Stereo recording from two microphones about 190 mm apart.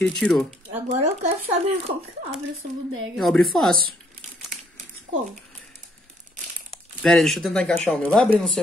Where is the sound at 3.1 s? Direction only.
Centre (ahead or behind).